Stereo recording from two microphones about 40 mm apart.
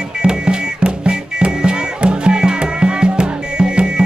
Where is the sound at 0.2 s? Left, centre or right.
Right.